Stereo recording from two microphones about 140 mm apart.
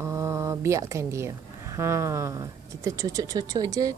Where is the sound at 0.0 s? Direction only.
20° right (ahead or behind).